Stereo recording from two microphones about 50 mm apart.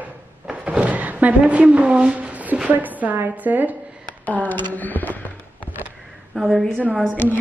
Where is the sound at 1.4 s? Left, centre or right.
Right.